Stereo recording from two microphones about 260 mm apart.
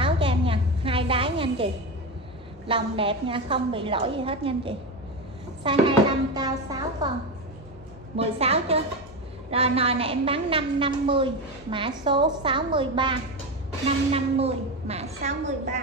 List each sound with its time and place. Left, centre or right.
0.0 s a sound: centre
2.7 s a woman's voice: centre
8.2 s a woman's voice: right